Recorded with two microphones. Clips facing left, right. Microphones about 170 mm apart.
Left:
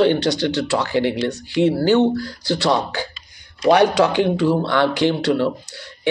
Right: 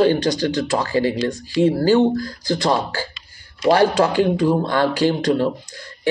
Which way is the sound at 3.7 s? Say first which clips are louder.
Left 1 dB; 75° left (ahead or behind).